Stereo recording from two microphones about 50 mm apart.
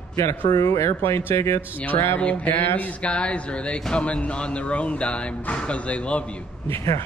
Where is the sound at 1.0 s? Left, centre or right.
Left.